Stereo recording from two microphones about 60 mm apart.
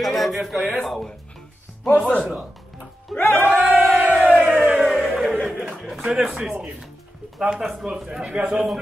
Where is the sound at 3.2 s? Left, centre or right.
Left.